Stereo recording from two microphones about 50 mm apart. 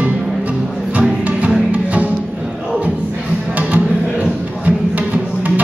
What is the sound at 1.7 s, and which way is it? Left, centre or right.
Music, right.